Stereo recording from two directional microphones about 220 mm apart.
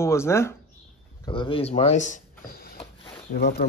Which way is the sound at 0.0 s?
10° left (ahead or behind).